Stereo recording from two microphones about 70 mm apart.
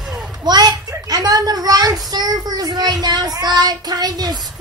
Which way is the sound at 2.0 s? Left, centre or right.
Right.